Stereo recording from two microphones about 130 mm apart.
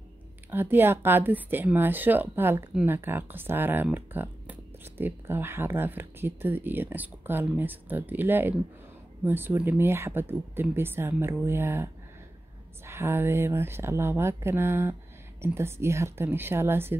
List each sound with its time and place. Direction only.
0.5 s speech: 15° right (ahead or behind)